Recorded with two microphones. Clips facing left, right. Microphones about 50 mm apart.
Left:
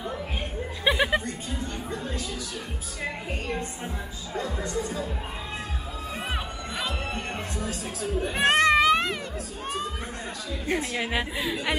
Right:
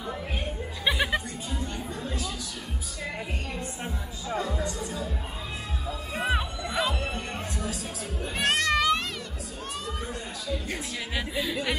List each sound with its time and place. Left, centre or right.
0.8 s speech: centre
4.6 s speech: left
6.3 s music: centre
7.2 s music: left
8.4 s a child's voice: left
8.7 s a sound: left
11.3 s speech: centre